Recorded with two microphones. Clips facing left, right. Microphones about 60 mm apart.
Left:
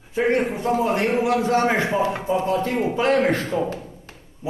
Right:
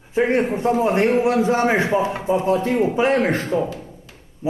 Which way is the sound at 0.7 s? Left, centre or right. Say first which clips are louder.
Right 3 dB; right.